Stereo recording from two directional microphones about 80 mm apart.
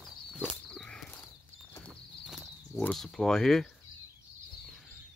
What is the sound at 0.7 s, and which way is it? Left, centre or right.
Walk, centre.